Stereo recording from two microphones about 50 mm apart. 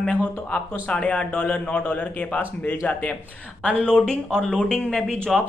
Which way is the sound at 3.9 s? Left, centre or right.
Centre.